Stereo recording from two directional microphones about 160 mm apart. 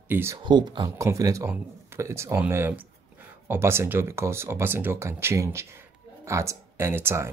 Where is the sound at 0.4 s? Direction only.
30° right (ahead or behind).